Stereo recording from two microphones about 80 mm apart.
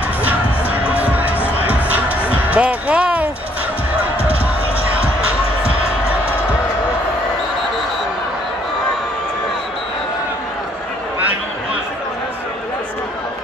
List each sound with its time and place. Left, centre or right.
0.2 s music: right